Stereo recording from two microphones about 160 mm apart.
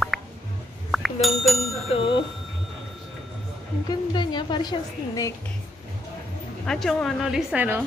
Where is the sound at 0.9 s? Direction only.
Centre (ahead or behind).